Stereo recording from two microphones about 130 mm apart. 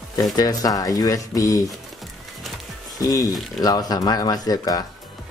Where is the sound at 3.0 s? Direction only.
30° left (ahead or behind).